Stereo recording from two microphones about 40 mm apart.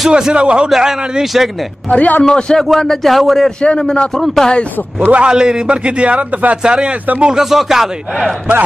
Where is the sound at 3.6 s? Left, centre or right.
Centre.